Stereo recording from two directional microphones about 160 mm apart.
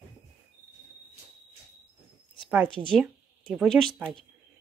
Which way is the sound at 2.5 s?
10° right (ahead or behind).